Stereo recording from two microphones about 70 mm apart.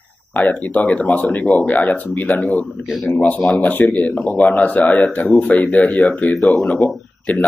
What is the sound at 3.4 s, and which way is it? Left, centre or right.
Speech, centre.